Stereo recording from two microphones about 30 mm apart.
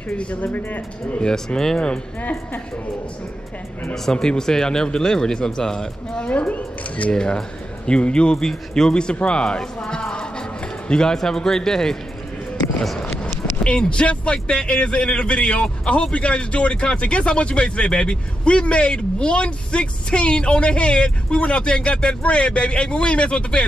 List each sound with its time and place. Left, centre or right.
0.1 s speech: left
0.4 s a man's voice: left
1.5 s speech: left
3.9 s speech: centre
6.4 s speech: left
7.1 s speech: left
8.5 s speech: centre
8.9 s speech: left; by 12.0 s centre
13.0 s speech: left